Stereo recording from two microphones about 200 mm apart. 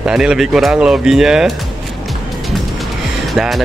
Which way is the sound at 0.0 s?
5° right (ahead or behind).